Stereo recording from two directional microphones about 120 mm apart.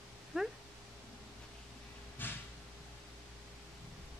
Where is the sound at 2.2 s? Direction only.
15° left (ahead or behind).